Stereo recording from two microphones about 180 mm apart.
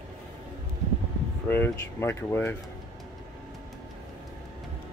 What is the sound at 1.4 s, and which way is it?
Speech, 10° left (ahead or behind).